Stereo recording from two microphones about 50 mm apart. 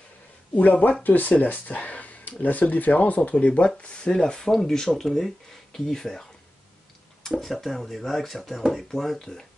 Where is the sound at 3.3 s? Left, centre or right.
Left.